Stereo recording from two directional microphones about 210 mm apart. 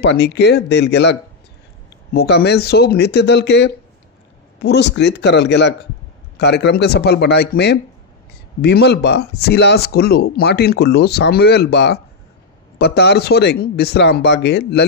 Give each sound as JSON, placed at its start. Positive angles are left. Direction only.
{"t": 0.0, "sound": "speech", "side_deg": 55}
{"t": 2.1, "sound": "speech", "side_deg": 50}